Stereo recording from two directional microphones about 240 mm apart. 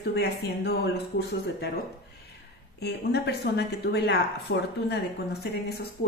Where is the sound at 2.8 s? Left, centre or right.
Left.